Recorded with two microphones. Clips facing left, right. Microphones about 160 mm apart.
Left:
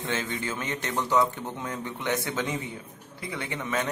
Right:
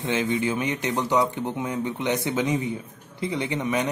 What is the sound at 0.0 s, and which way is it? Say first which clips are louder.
Speech: right 7 dB; 20° right (ahead or behind).